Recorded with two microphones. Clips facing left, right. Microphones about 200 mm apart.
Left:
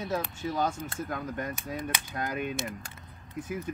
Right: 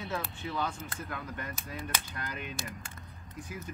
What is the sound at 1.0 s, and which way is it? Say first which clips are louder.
Cap gun: left 6 dB; 45° left (ahead or behind).